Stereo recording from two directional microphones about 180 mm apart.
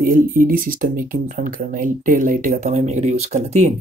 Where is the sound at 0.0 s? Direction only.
50° right (ahead or behind).